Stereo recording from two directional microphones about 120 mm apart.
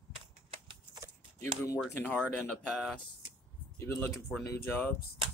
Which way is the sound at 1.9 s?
15° left (ahead or behind).